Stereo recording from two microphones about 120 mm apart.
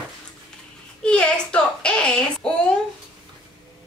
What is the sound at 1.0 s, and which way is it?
A child's voice, 10° left (ahead or behind).